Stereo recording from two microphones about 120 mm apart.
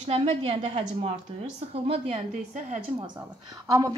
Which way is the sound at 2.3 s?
85° right.